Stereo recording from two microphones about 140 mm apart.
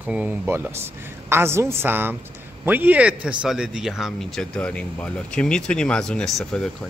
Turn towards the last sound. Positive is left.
turn(degrees=0)  # may be behind; listen again after turning